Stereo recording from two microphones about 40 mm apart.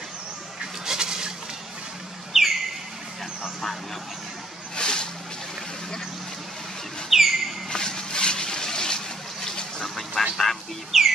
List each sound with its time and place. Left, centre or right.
0.8 s goat: centre
2.3 s bird: centre
4.7 s a sound: centre
7.1 s bird: centre
7.7 s water: centre
10.3 s music: centre
10.9 s music: centre